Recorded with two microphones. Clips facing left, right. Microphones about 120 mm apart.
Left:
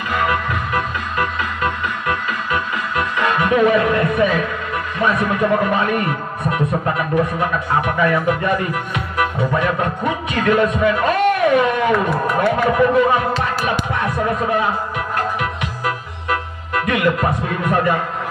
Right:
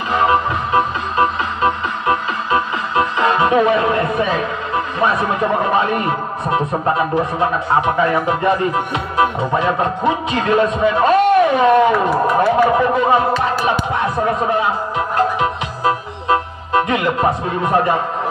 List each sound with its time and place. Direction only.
0.1 s music: 25° right (ahead or behind)
12.4 s speech: 30° right (ahead or behind)
15.0 s music: 25° right (ahead or behind)